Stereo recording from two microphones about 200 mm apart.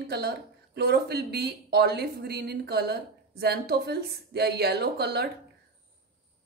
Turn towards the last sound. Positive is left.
turn(degrees=-55)  # may be behind; listen again after turning